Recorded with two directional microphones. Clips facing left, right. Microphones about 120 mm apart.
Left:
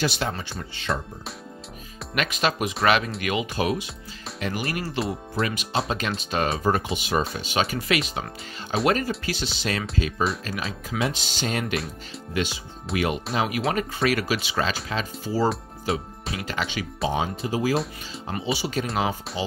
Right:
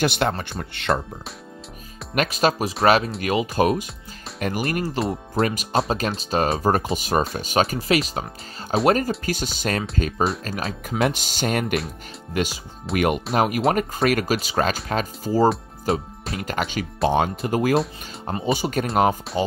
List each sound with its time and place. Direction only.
0.0 s speech: 60° right (ahead or behind)
2.1 s speech: 40° right (ahead or behind)
5.0 s speech: 40° right (ahead or behind)
12.9 s speech: 55° right (ahead or behind)
15.9 s speech: centre (ahead or behind)
16.4 s speech: 50° right (ahead or behind)